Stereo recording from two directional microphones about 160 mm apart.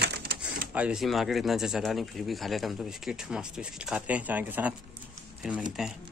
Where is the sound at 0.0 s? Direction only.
85° right.